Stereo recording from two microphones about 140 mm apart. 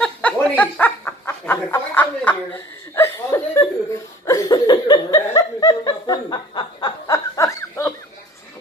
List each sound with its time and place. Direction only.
0.0 s snicker: 10° left (ahead or behind)
4.3 s chuckle: 30° left (ahead or behind)